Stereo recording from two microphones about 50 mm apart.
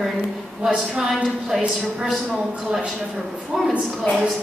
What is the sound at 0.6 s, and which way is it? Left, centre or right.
Speech, right.